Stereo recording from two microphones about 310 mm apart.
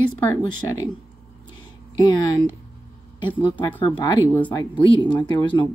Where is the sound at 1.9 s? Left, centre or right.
Centre.